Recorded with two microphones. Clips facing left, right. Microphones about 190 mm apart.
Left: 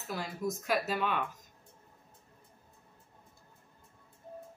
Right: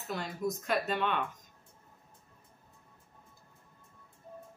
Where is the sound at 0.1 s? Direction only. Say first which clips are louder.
Right 1 dB; centre (ahead or behind).